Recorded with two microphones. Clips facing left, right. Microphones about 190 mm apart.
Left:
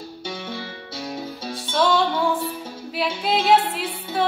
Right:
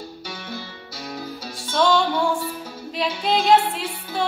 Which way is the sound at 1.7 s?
5° left (ahead or behind).